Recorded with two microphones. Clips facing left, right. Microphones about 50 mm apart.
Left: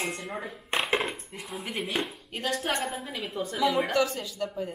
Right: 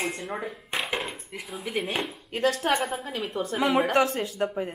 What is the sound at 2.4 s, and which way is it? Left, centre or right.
A woman's voice, right.